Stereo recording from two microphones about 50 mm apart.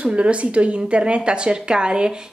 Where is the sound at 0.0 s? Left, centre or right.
Right.